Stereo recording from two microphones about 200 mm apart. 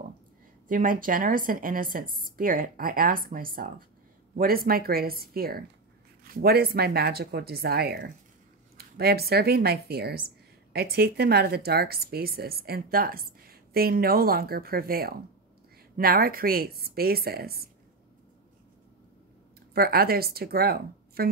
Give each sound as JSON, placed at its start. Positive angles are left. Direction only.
{"t": 0.7, "sound": "a woman's voice", "side_deg": -45}
{"t": 19.7, "sound": "speech", "side_deg": -50}